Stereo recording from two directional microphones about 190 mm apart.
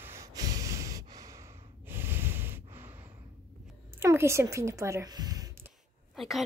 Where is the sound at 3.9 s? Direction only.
15° right (ahead or behind).